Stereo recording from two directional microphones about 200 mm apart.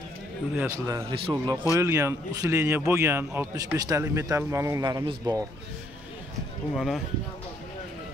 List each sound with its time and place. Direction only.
0.6 s a man's voice: 15° right (ahead or behind)
6.7 s speech: centre (ahead or behind)